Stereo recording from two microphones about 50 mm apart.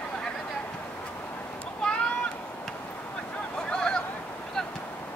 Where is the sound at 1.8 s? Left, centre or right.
Centre.